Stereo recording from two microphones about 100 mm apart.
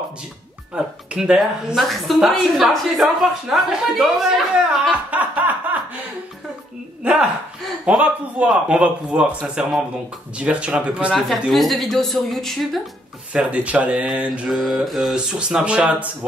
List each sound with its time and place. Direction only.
0.7 s speech: 10° right (ahead or behind)
5.1 s snicker: 15° right (ahead or behind)
7.0 s a woman's voice: 10° right (ahead or behind)
13.3 s a man's voice: 10° right (ahead or behind)
14.5 s a man's voice: centre (ahead or behind)